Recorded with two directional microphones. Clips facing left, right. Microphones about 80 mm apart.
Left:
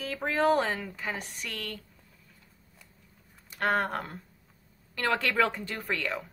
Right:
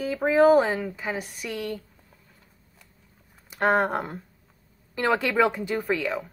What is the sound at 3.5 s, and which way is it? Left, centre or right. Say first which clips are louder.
Speech: right 6 dB; centre.